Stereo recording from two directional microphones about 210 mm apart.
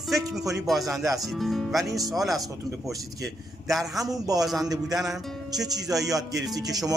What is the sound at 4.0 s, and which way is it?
Speech, 15° right (ahead or behind).